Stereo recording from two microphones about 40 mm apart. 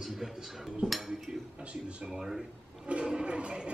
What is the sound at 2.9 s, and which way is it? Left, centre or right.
Toilet flush, right.